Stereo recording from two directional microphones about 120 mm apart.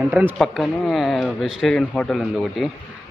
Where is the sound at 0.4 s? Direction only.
Centre (ahead or behind).